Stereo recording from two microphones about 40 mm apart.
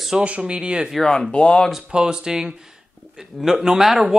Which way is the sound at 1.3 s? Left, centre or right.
Left.